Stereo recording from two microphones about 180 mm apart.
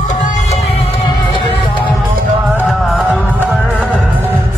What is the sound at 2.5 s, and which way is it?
Music, centre (ahead or behind).